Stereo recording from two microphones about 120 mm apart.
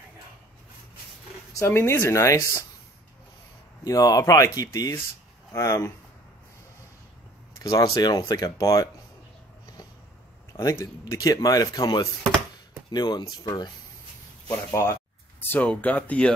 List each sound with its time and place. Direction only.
1.5 s speech: 20° left (ahead or behind)
3.8 s speech: 30° left (ahead or behind)
7.5 s speech: 30° left (ahead or behind)
10.5 s speech: 30° left (ahead or behind)
14.7 s speech: 25° left (ahead or behind)
15.5 s speech: 15° left (ahead or behind)